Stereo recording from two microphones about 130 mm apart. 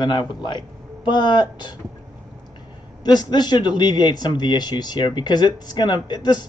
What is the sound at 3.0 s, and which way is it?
A man's voice, 35° left (ahead or behind).